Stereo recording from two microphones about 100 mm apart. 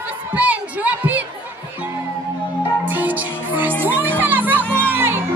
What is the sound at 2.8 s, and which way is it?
Music, 15° right (ahead or behind).